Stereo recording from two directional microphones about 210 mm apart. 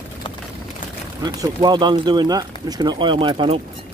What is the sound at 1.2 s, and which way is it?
Speech, 20° right (ahead or behind).